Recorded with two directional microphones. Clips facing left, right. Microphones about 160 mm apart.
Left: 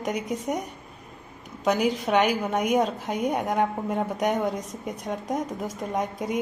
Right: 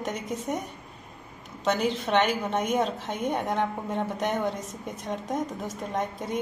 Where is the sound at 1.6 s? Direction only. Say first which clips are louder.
Left 3 dB; 10° left (ahead or behind).